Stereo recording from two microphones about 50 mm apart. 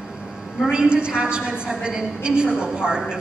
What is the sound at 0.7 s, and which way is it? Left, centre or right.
A woman's voice, centre.